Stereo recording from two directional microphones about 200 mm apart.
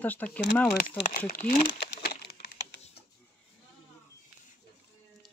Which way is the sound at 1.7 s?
55° left (ahead or behind).